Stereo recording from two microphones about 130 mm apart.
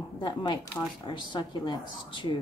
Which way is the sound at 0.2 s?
35° left (ahead or behind).